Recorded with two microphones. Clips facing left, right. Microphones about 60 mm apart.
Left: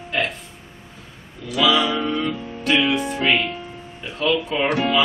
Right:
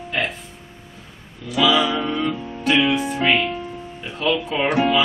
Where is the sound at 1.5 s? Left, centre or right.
Centre.